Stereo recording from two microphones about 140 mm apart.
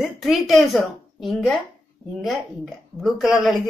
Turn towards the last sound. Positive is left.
turn(degrees=0)  # may be behind; listen again after turning